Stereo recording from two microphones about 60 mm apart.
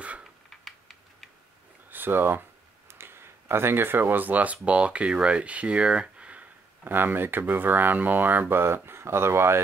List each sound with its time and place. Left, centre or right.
0.2 s typing: centre
1.9 s speech: right; by 6.4 s centre
6.8 s speech: right